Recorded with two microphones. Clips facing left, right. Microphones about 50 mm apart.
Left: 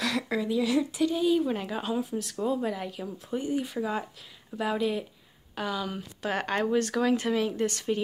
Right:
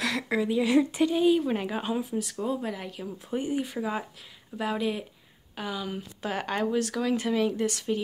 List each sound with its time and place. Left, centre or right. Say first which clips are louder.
0.0 s a sound: right 1 dB; centre
0.5 s speech: right 4 dB; right; by 3.3 s centre
3.3 s speech: right 1 dB; right
3.6 s speech: even; centre